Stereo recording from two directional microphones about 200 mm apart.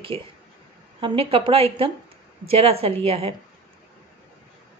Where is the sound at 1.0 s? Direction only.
25° right (ahead or behind).